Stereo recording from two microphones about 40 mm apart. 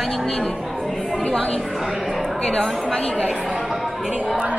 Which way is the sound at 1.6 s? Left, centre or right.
Centre.